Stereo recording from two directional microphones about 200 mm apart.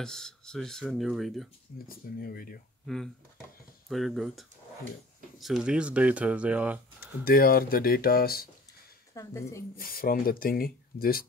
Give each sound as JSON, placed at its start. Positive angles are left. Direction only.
{"t": 0.0, "sound": "speech", "side_deg": 5}
{"t": 1.9, "sound": "speech", "side_deg": 50}
{"t": 3.9, "sound": "speech", "side_deg": 0}
{"t": 7.2, "sound": "speech", "side_deg": 45}
{"t": 9.1, "sound": "speech", "side_deg": 15}
{"t": 9.8, "sound": "speech", "side_deg": 45}